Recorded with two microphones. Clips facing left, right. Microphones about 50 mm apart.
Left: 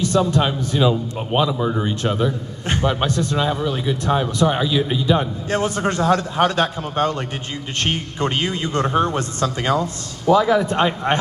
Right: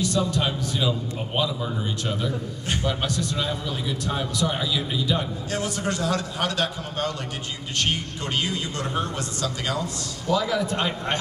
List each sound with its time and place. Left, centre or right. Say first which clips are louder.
0.0 s a man's voice: left 6 dB; left
2.2 s a man's voice: left 5 dB; left